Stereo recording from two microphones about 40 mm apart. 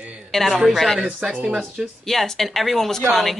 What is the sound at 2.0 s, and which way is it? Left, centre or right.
Speech, centre.